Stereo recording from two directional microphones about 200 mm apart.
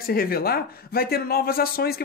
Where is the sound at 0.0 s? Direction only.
50° left (ahead or behind).